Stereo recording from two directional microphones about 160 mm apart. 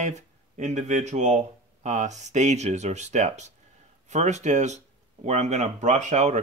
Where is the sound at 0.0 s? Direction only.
45° right (ahead or behind).